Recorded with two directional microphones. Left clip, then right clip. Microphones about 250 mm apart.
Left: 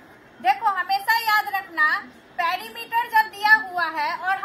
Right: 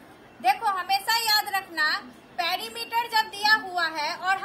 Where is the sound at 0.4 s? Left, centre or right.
Right.